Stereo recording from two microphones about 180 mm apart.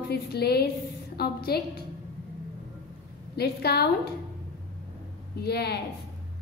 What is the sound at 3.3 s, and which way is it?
Speech, 60° left (ahead or behind).